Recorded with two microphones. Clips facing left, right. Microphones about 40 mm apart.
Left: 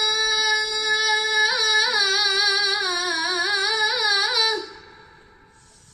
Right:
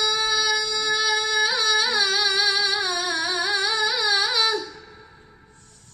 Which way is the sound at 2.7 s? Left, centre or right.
Left.